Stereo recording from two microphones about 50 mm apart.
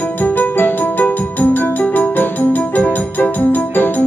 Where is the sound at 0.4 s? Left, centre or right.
Left.